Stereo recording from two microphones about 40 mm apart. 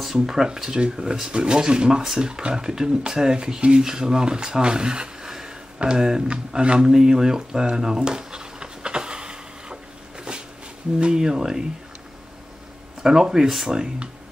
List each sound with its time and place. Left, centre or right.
0.0 s speech: centre
5.8 s a sound: centre
11.0 s speech: centre
13.0 s speech: centre